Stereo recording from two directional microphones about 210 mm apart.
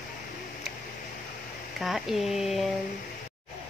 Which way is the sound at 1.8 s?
Centre (ahead or behind).